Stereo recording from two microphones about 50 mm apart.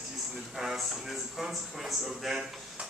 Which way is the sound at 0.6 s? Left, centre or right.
Centre.